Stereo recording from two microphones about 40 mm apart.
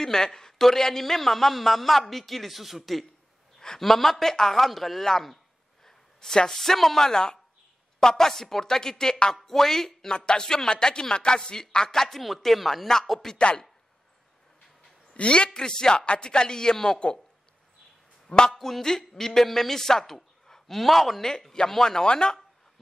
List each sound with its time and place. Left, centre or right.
0.0 s a man's voice: centre
10.1 s a man's voice: left
12.2 s a man's voice: centre
13.4 s a man's voice: left
15.1 s a man's voice: left
18.5 s speech: centre
21.3 s a man's voice: centre